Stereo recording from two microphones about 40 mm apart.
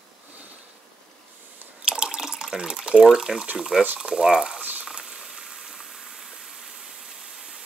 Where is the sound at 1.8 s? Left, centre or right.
Right.